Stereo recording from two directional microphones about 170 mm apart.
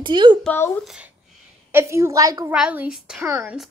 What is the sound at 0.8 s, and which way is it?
Speech, centre (ahead or behind).